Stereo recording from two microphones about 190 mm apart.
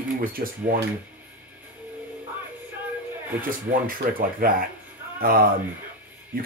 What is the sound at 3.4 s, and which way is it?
Speech, 45° right (ahead or behind).